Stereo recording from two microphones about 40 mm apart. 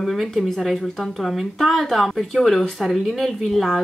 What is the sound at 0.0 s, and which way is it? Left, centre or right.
Speech, centre.